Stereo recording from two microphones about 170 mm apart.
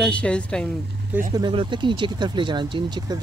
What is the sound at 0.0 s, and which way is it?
Speech, 5° left (ahead or behind).